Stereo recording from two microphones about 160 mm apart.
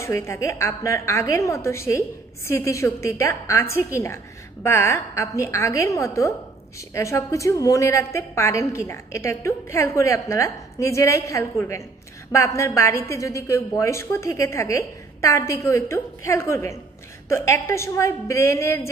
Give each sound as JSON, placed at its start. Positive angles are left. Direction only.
{"t": 0.0, "sound": "a woman's voice", "side_deg": 15}